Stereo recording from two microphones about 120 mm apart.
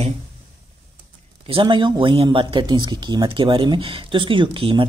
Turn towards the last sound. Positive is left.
turn(degrees=-45)  # may be behind; listen again after turning